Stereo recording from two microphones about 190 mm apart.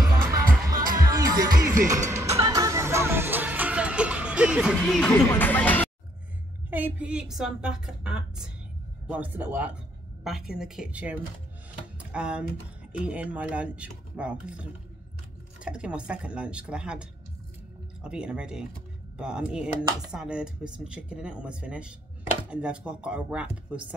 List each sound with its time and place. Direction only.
0.0 s music: 20° right (ahead or behind); by 5.1 s centre (ahead or behind)
5.3 s speech: 10° left (ahead or behind)
6.7 s speech: 10° right (ahead or behind)